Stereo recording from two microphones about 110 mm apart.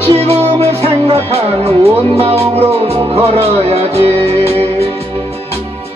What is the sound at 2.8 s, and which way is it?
Music, 65° right (ahead or behind).